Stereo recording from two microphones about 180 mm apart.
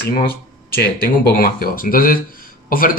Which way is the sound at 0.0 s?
55° left (ahead or behind).